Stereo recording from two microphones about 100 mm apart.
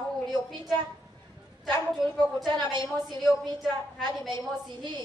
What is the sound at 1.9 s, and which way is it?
A woman's voice, centre (ahead or behind).